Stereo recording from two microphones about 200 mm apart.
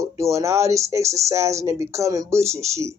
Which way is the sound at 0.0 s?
15° right (ahead or behind).